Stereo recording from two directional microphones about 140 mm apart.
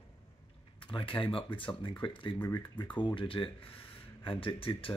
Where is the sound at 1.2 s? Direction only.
40° left (ahead or behind).